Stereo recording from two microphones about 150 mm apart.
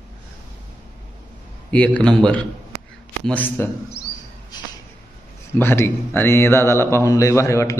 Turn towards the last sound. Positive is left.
turn(degrees=20)  # may be behind; listen again after turning